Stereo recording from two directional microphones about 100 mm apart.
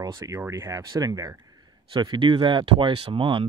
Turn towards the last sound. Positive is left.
turn(degrees=-60)  # may be behind; listen again after turning